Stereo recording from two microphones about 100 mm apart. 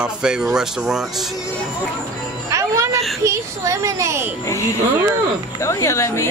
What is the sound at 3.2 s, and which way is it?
A child's voice, 30° right (ahead or behind).